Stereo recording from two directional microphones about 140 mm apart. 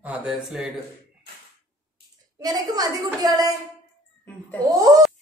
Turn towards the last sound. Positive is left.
turn(degrees=-25)  # may be behind; listen again after turning